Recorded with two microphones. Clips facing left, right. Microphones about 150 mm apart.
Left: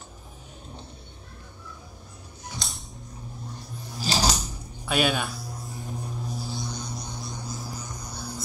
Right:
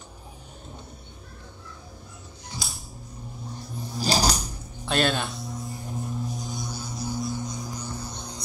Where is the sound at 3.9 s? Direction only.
40° right (ahead or behind).